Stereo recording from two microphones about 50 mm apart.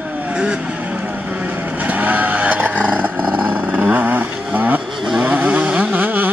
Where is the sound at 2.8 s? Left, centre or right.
Right.